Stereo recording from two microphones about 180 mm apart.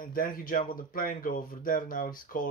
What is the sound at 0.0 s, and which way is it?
Speech, 50° left (ahead or behind).